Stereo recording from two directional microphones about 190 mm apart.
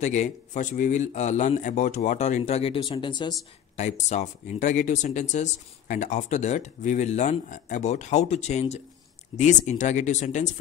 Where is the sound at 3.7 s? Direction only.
35° left (ahead or behind).